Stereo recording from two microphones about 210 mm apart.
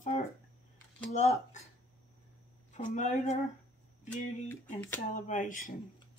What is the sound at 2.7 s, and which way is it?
Speech, 35° left (ahead or behind).